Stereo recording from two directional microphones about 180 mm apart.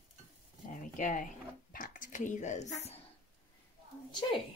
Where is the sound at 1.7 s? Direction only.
50° left (ahead or behind).